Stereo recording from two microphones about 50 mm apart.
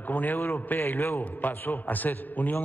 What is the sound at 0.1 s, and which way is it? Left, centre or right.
A man's voice, left.